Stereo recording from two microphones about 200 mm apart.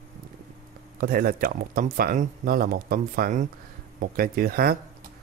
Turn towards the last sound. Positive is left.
turn(degrees=-50)  # may be behind; listen again after turning